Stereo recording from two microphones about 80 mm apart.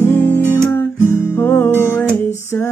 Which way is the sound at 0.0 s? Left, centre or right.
Left.